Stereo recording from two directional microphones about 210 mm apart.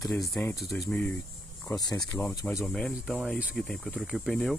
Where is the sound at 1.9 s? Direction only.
5° left (ahead or behind).